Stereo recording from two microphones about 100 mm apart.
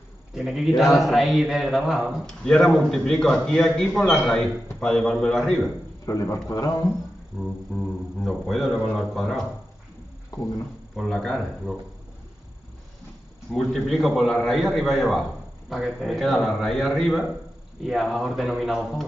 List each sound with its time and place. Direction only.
0.3 s a man's voice: 5° right (ahead or behind)
6.0 s a man's voice: 35° left (ahead or behind)
7.3 s a man's voice: centre (ahead or behind)
11.0 s a man's voice: centre (ahead or behind)
13.5 s a man's voice: 5° left (ahead or behind)